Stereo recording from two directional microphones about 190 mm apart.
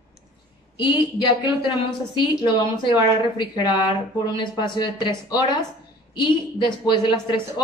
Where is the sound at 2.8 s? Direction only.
25° left (ahead or behind).